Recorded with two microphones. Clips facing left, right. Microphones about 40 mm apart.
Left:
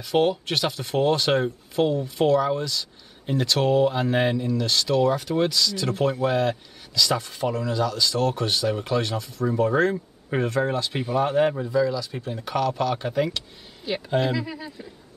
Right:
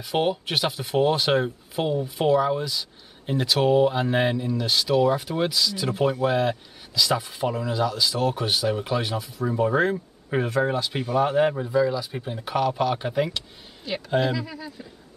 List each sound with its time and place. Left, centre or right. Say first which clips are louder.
0.0 s speech: left 2 dB; centre
11.6 s speech: even; centre
13.8 s speech: even; centre